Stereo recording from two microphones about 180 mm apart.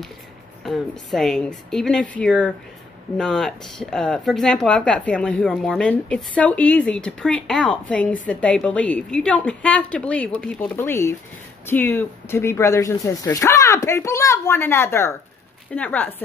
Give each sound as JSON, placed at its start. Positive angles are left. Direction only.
{"t": 0.7, "sound": "speech", "side_deg": 0}